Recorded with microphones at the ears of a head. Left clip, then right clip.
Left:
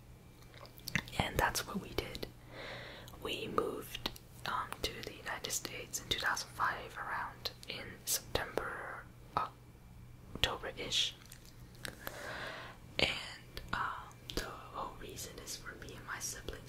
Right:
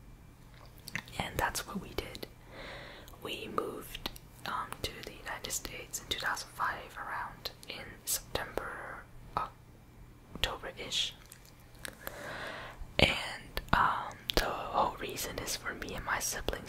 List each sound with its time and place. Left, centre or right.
1.0 s whispering: centre
12.9 s whispering: right